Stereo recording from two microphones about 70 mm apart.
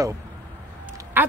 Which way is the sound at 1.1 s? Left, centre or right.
Right.